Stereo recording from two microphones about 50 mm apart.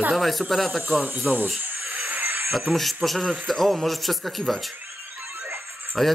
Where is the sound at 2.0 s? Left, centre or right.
Right.